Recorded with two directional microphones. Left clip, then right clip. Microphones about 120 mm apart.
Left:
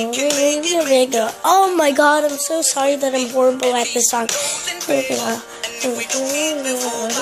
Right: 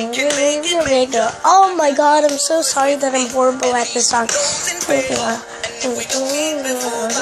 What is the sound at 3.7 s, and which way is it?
Speech, 40° left (ahead or behind).